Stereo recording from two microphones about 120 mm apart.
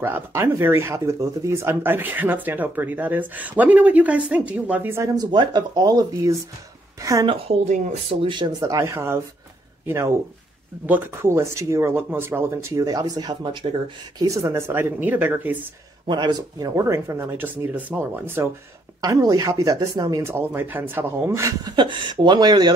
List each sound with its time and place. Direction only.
0.0 s speech: 15° right (ahead or behind)
5.1 s speech: 35° right (ahead or behind)
7.2 s speech: 65° right (ahead or behind)
8.2 s speech: 40° right (ahead or behind)
14.2 s speech: 25° right (ahead or behind)
16.1 s speech: 35° right (ahead or behind); by 18.5 s 20° right (ahead or behind)
18.9 s speech: 30° right (ahead or behind)
21.7 s speech: 40° right (ahead or behind)